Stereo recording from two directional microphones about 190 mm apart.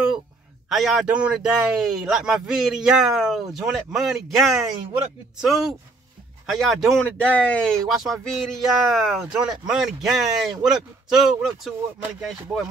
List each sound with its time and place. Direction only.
0.7 s speech: centre (ahead or behind)